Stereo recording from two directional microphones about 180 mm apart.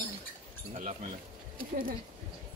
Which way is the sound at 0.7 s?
40° right (ahead or behind).